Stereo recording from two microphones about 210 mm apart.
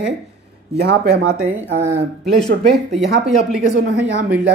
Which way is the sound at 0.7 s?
50° right (ahead or behind).